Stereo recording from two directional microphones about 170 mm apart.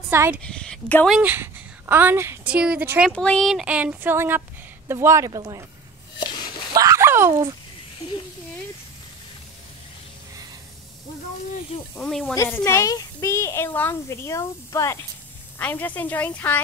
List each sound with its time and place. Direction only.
0.1 s speech: 15° right (ahead or behind)
0.4 s speech: 5° left (ahead or behind)
1.1 s a woman's voice: 10° right (ahead or behind)
3.1 s speech: 5° left (ahead or behind); by 5.7 s 20° right (ahead or behind)
6.7 s a sound: 20° right (ahead or behind)
11.9 s speech: 5° left (ahead or behind)
12.4 s speech: 15° left (ahead or behind)